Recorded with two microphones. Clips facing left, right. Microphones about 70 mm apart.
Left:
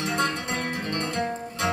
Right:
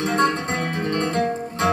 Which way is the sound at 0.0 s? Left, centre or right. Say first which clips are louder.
Right 6 dB; right.